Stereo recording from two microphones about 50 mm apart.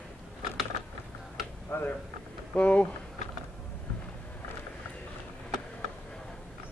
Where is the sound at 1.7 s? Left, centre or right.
Left.